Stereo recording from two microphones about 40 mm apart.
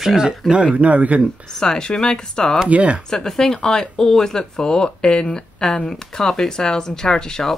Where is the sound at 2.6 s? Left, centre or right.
Right.